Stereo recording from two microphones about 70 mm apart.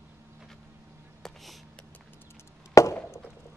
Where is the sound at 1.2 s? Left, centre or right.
Centre.